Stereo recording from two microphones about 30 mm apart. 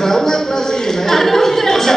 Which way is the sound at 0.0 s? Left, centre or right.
Centre.